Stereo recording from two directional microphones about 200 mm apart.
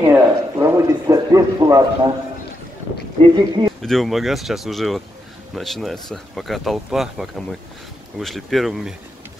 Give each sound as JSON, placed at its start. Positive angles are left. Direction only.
{"t": 0.0, "sound": "speech", "side_deg": -15}
{"t": 3.3, "sound": "speech", "side_deg": -20}
{"t": 3.8, "sound": "speech", "side_deg": 0}